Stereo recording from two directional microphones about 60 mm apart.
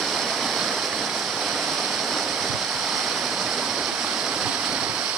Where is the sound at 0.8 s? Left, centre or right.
Centre.